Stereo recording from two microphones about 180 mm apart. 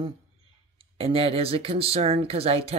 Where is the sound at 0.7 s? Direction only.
30° right (ahead or behind).